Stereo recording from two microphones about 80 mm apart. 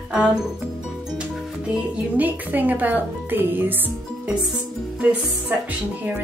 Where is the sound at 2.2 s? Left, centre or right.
Right.